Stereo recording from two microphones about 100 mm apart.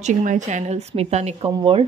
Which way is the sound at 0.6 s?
90° right.